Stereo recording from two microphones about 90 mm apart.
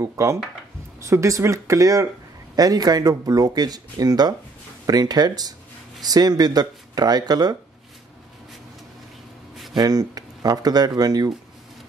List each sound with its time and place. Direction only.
0.0 s speech: 35° right (ahead or behind)
9.8 s speech: 45° right (ahead or behind)